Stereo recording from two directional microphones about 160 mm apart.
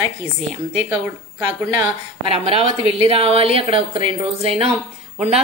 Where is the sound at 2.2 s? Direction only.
35° right (ahead or behind).